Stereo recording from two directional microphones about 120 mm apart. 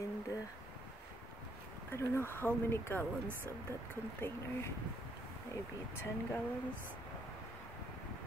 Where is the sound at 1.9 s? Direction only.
20° left (ahead or behind).